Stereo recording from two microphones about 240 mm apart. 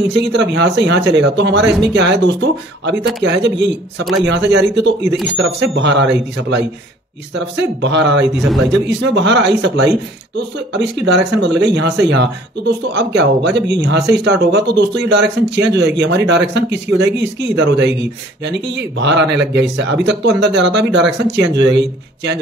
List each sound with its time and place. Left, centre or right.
0.1 s speech: right